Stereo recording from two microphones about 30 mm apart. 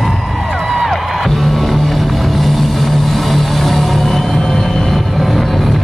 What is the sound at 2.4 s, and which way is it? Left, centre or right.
Vehicle, centre.